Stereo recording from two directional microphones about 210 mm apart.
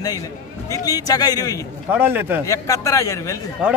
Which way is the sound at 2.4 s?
15° left (ahead or behind).